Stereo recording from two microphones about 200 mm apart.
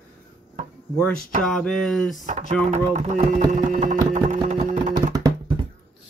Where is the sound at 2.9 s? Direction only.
35° right (ahead or behind).